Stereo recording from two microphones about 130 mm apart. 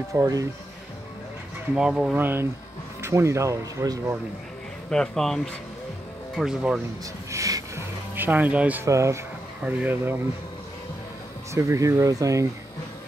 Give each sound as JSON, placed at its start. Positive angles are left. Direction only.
{"t": 0.1, "sound": "speech", "side_deg": -25}
{"t": 1.8, "sound": "speech", "side_deg": -5}
{"t": 4.8, "sound": "speech", "side_deg": 5}
{"t": 7.2, "sound": "music", "side_deg": -25}
{"t": 8.8, "sound": "speech", "side_deg": -20}
{"t": 9.6, "sound": "speech", "side_deg": -10}
{"t": 11.5, "sound": "speech", "side_deg": -25}